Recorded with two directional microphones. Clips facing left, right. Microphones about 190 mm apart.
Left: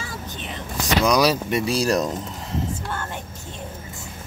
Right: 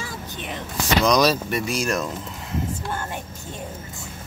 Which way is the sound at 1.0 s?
10° left (ahead or behind).